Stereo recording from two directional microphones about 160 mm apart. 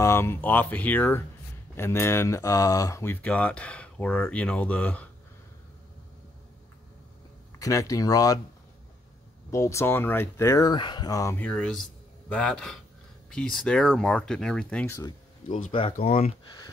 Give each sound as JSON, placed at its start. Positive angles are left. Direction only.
{"t": 0.0, "sound": "speech", "side_deg": 15}
{"t": 7.5, "sound": "speech", "side_deg": 20}
{"t": 9.5, "sound": "speech", "side_deg": 20}
{"t": 11.4, "sound": "a man's voice", "side_deg": 5}
{"t": 15.0, "sound": "a sound", "side_deg": 25}
{"t": 15.7, "sound": "speech", "side_deg": 30}